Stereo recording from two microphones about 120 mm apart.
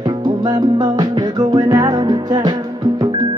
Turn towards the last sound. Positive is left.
turn(degrees=-35)  # may be behind; listen again after turning